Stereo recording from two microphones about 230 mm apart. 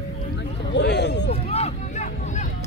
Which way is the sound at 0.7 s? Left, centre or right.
Left.